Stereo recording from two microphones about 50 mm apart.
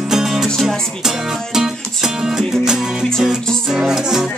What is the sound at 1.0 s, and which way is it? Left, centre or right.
Music, centre.